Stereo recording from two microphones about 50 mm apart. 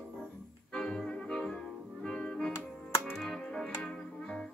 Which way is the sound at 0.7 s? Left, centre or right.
Centre.